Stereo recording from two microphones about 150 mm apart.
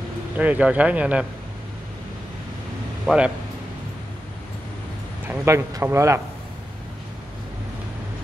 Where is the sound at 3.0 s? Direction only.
5° right (ahead or behind).